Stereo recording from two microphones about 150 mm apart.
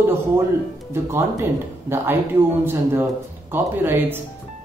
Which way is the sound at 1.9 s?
15° right (ahead or behind).